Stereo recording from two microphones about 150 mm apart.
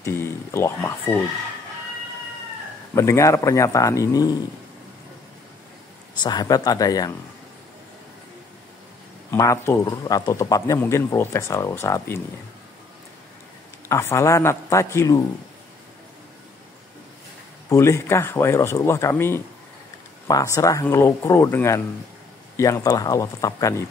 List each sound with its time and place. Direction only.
0.0 s speech: 15° left (ahead or behind)
2.9 s a man's voice: 20° left (ahead or behind)
6.2 s a man's voice: 25° left (ahead or behind)
9.3 s a man's voice: 20° left (ahead or behind)
13.8 s a man's voice: 20° left (ahead or behind)
17.6 s a man's voice: 20° left (ahead or behind)